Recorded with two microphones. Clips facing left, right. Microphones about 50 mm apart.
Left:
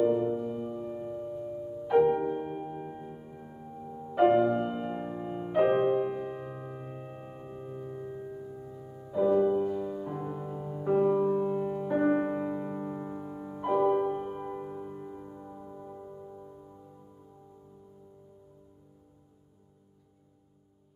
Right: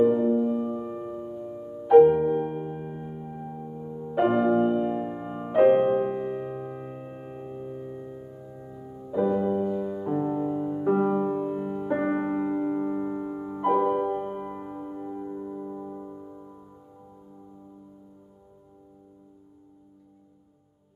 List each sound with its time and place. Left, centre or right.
0.0 s music: centre
1.5 s music: right; by 8.5 s centre
8.5 s music: centre